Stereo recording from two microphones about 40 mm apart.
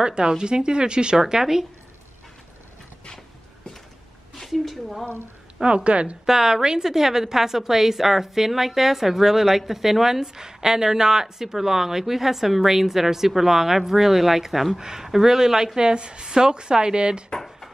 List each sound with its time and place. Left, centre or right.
0.0 s speech: right
1.1 s a woman's voice: centre
4.4 s a woman's voice: centre
5.9 s a woman's voice: right
6.2 s a woman's voice: centre
14.8 s a woman's voice: centre
17.3 s a sound: centre